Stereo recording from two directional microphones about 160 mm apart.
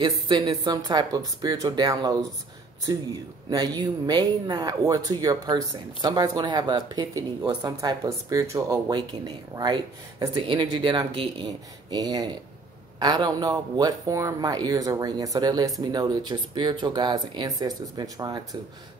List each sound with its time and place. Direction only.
0.0 s speech: 35° right (ahead or behind)
3.4 s speech: 25° right (ahead or behind)